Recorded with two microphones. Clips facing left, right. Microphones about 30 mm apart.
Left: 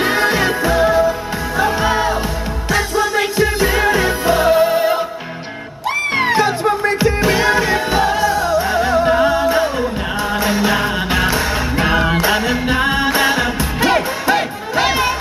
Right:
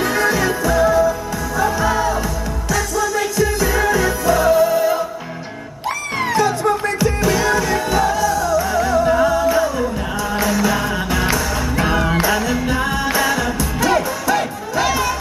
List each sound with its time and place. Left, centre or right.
0.0 s music: left
6.1 s music: left